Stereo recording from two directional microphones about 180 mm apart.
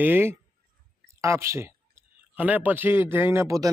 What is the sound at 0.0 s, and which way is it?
A man's voice, 10° right (ahead or behind).